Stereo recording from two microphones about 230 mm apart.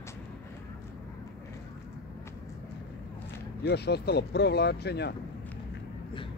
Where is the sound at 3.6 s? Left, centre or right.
Left.